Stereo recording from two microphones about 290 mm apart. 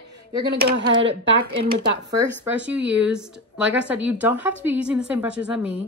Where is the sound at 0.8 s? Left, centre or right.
Right.